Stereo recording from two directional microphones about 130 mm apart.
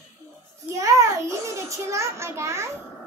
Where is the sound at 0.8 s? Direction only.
25° right (ahead or behind).